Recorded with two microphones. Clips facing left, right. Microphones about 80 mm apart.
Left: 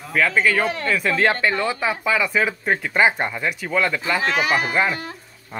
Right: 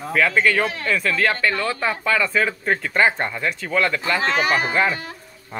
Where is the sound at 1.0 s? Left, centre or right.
Left.